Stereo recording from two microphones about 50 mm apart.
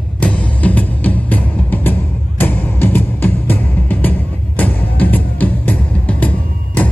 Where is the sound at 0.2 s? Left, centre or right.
Left.